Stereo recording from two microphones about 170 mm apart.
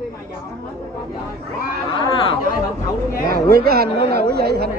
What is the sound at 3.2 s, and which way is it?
Speech, 65° right (ahead or behind).